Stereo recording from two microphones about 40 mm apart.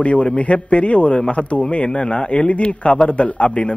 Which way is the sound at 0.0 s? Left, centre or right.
Left.